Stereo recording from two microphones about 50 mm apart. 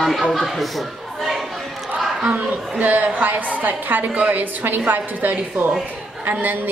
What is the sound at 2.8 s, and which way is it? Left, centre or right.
A woman's voice, right.